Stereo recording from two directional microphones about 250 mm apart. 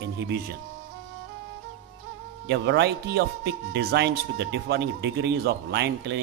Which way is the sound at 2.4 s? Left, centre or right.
Right.